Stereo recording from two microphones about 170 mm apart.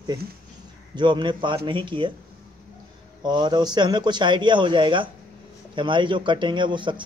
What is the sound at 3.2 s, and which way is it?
Speech, 25° right (ahead or behind).